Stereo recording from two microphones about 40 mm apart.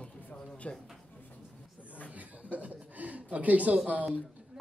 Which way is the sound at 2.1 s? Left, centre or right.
Right.